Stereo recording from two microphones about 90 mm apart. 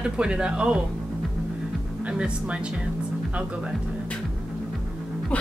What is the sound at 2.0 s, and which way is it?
A woman's voice, 10° right (ahead or behind).